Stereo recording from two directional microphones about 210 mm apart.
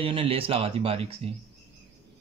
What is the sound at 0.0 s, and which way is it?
Speech, 25° right (ahead or behind).